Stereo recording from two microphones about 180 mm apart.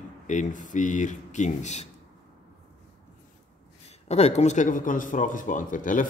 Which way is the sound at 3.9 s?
35° left (ahead or behind).